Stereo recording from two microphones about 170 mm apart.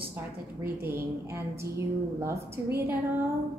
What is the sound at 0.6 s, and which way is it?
A woman's voice, 15° right (ahead or behind).